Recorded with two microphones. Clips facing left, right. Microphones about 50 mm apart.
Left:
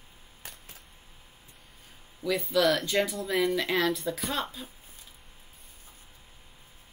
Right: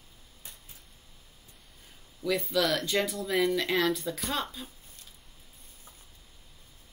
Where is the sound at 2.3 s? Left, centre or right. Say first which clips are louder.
Left 2 dB; centre.